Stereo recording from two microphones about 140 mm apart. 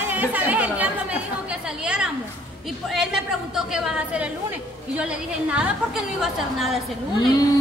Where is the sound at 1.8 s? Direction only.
5° right (ahead or behind).